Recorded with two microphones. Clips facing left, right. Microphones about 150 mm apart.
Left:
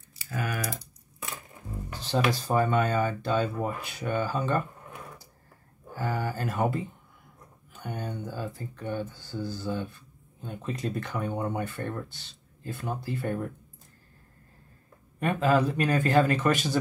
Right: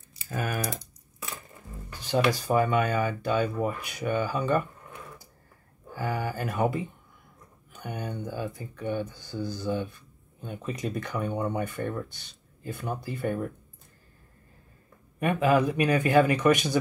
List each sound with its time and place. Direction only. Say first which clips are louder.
0.2 s speech: right 2 dB; 25° right (ahead or behind)
2.0 s speech: right 2 dB; 15° right (ahead or behind)
5.9 s speech: even; 15° right (ahead or behind)
15.1 s speech: right 1 dB; 15° right (ahead or behind)